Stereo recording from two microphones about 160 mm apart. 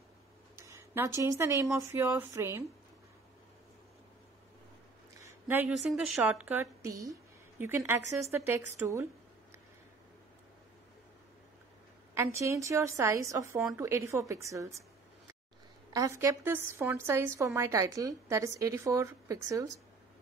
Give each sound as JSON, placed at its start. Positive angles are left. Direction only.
{"t": 0.6, "sound": "speech", "side_deg": -20}
{"t": 5.2, "sound": "a sound", "side_deg": -10}
{"t": 5.7, "sound": "a woman's voice", "side_deg": 0}
{"t": 12.1, "sound": "a woman's voice", "side_deg": -15}
{"t": 15.9, "sound": "a woman's voice", "side_deg": -20}